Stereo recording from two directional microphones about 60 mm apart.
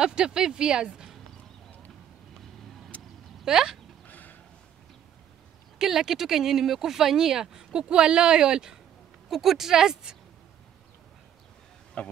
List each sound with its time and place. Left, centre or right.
0.0 s speech: centre
3.4 s speech: centre
4.1 s a sound: left
5.8 s speech: centre
9.3 s speech: centre
12.0 s a man's voice: left